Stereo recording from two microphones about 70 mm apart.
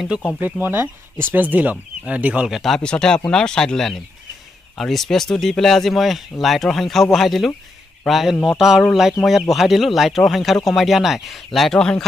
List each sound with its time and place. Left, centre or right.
0.4 s speech: right
2.4 s speech: centre
2.8 s speech: centre